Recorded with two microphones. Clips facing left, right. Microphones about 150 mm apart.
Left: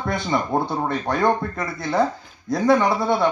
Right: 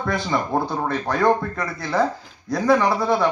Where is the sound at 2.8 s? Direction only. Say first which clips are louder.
Even; centre (ahead or behind).